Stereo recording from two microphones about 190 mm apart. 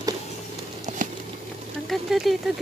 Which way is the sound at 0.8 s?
45° right (ahead or behind).